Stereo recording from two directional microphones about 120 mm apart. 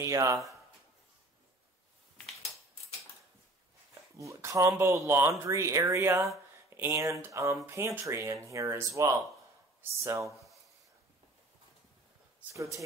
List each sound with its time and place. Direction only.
0.0 s speech: 25° right (ahead or behind)
4.2 s speech: 25° right (ahead or behind)